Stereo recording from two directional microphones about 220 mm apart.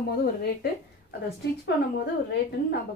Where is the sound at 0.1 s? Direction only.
45° left (ahead or behind).